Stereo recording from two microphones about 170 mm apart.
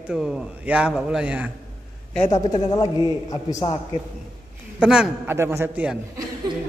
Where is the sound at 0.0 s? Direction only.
5° right (ahead or behind).